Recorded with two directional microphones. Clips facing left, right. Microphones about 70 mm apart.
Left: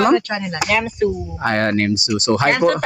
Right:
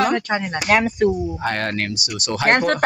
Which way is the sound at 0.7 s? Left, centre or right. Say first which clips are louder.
Right 2 dB; right.